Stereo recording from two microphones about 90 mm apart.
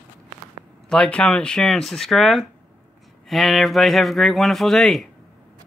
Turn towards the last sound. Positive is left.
turn(degrees=0)  # may be behind; listen again after turning